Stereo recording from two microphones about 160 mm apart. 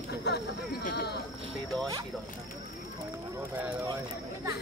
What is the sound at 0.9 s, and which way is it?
Speech, 90° left.